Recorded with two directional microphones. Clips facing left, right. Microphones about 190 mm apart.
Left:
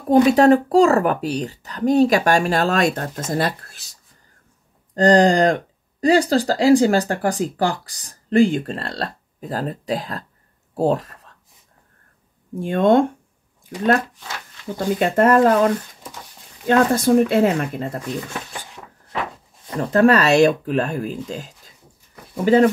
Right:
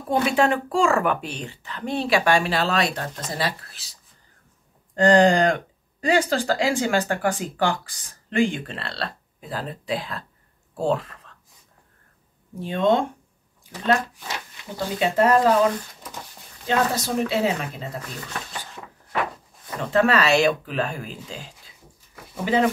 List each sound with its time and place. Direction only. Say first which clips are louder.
0.1 s speech: left 8 dB; 40° left (ahead or behind)
4.9 s speech: left 2 dB; 40° left (ahead or behind)
12.5 s speech: left 5 dB; 50° left (ahead or behind)
15.0 s speech: left 3 dB; 50° left (ahead or behind)
16.6 s speech: left 7 dB; 50° left (ahead or behind)
19.7 s speech: left 5 dB; 40° left (ahead or behind)